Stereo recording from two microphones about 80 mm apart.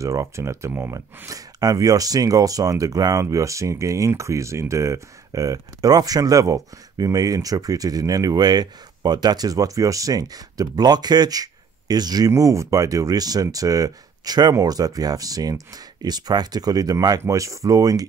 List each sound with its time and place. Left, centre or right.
0.0 s speech: right
0.9 s speech: right
12.3 s speech: right